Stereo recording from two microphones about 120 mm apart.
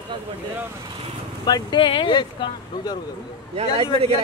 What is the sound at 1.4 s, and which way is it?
Speech, 40° left (ahead or behind).